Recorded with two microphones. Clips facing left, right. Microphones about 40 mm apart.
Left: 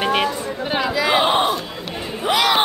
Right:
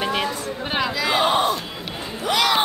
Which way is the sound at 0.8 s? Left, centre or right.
Centre.